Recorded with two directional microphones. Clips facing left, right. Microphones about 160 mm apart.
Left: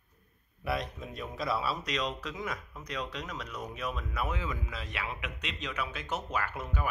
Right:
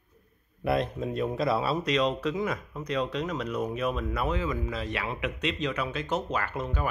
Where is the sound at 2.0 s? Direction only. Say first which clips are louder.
Right 8 dB; 30° right (ahead or behind).